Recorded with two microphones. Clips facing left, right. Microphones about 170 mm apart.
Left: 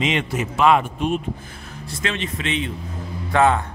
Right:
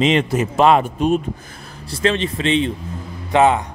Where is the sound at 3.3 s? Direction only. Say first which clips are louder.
Right 3 dB; 20° right (ahead or behind).